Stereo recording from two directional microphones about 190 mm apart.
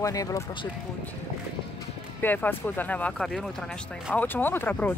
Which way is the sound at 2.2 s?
10° left (ahead or behind).